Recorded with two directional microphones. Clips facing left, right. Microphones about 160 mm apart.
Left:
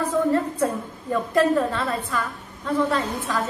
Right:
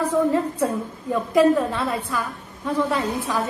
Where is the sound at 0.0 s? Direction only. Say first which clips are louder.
Right 1 dB; 10° right (ahead or behind).